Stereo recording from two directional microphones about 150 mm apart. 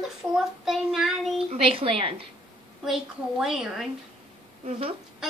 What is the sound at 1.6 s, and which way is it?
Speech, 40° right (ahead or behind).